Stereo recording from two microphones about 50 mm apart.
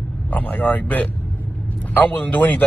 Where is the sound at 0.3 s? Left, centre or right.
Left.